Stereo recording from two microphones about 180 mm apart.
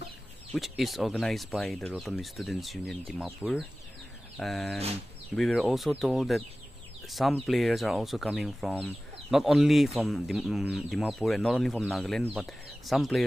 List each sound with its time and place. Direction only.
0.5 s speech: centre (ahead or behind)
4.4 s speech: centre (ahead or behind)
4.7 s speech: 35° right (ahead or behind)
5.3 s speech: centre (ahead or behind)